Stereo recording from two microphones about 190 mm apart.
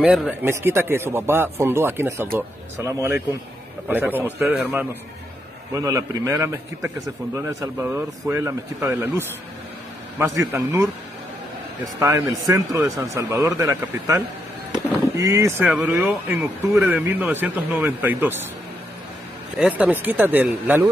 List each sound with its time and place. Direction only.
0.0 s speech: 5° right (ahead or behind)
12.4 s speech: 15° right (ahead or behind)
14.7 s a sound: 15° right (ahead or behind)
15.6 s speech: 5° right (ahead or behind)
19.5 s speech: 5° right (ahead or behind)